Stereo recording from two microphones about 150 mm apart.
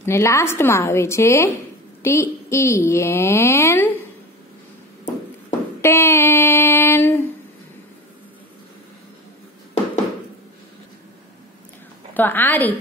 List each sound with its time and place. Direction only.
0.0 s a woman's voice: 20° left (ahead or behind)
5.8 s a sound: 15° left (ahead or behind)
12.1 s a woman's voice: 10° left (ahead or behind)